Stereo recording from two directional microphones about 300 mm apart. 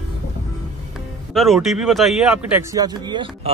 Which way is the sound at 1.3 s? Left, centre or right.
Centre.